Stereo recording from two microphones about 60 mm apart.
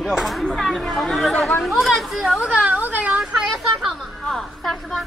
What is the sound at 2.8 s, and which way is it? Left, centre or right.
Speech, right.